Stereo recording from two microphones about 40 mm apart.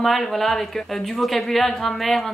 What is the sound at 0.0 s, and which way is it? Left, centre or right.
Speech, centre.